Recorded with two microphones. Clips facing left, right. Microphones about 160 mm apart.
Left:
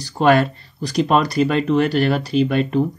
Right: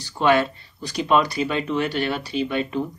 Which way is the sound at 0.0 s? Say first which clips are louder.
Left 4 dB; 40° left (ahead or behind).